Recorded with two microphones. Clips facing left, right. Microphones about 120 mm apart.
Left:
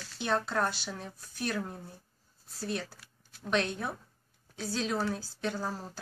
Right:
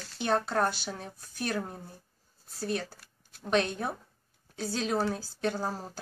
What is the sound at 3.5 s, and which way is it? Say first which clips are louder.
Speech: right 3 dB; 45° right (ahead or behind).